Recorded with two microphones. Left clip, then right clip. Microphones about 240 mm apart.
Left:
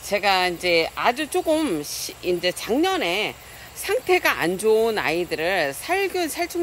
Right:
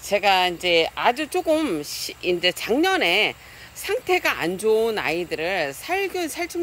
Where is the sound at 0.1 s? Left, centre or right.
Centre.